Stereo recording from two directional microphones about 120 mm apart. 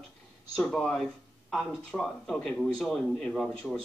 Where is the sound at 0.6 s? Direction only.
5° left (ahead or behind).